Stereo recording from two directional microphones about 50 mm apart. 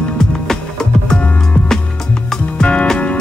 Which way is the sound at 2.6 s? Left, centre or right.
Centre.